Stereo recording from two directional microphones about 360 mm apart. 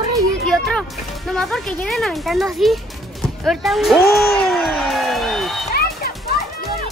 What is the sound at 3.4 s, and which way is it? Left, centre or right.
Music, centre.